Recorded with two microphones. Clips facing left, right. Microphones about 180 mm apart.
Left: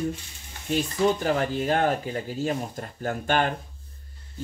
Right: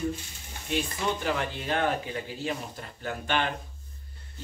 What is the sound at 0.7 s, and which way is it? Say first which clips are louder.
Speech: left 6 dB; 40° left (ahead or behind).